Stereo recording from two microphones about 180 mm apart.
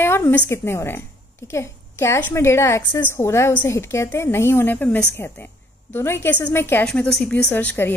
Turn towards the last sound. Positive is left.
turn(degrees=10)  # may be behind; listen again after turning